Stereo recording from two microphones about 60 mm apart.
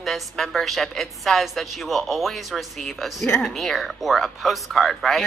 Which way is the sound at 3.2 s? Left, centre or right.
Centre.